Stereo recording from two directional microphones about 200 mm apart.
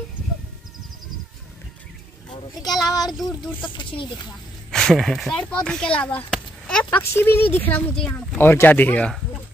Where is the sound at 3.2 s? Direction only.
Centre (ahead or behind).